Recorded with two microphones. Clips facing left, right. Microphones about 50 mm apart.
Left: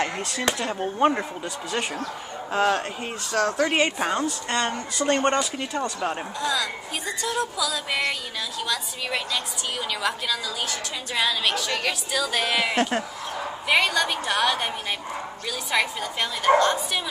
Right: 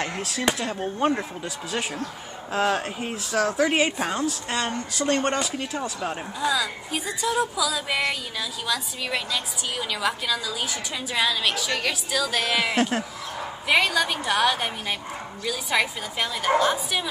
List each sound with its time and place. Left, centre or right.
0.0 s a woman's voice: centre